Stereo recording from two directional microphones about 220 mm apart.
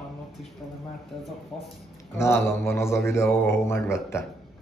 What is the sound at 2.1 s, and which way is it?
Speech, 10° left (ahead or behind).